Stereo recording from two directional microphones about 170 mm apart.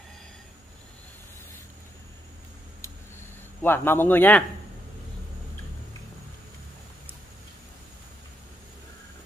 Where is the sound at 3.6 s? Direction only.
15° left (ahead or behind).